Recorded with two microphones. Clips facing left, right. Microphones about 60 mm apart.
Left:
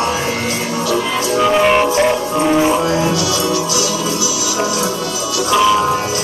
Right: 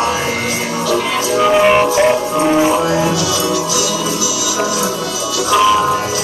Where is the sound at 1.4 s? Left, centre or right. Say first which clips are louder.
Right 2 dB; centre.